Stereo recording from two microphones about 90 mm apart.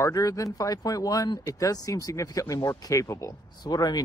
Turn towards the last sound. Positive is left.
turn(degrees=45)  # may be behind; listen again after turning